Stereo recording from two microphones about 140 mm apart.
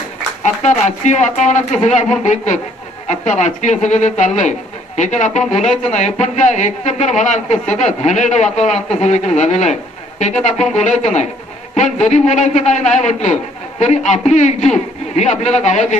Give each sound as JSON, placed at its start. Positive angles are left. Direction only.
{"t": 0.4, "sound": "speech", "side_deg": 55}